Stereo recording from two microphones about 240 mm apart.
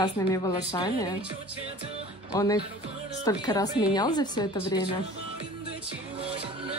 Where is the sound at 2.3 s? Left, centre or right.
Centre.